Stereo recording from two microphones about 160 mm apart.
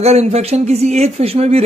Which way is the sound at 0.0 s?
40° right (ahead or behind).